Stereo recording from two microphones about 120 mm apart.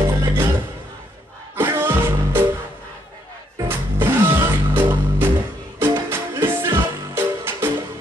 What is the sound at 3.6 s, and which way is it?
Music, 20° right (ahead or behind).